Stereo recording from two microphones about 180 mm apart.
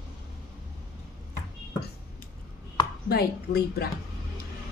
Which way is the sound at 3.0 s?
60° left (ahead or behind).